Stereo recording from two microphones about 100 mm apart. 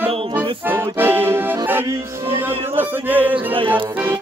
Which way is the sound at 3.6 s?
20° right (ahead or behind).